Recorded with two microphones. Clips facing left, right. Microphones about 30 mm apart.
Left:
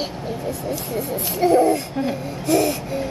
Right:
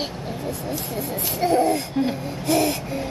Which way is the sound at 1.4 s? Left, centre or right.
Right.